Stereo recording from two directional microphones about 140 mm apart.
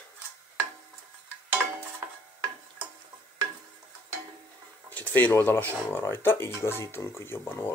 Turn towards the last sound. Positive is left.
turn(degrees=15)  # may be behind; listen again after turning